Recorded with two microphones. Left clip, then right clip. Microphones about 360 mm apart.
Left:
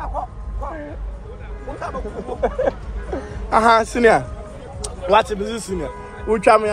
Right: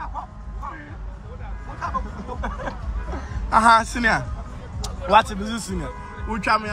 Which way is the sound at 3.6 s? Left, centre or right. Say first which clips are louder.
Left 2 dB; centre.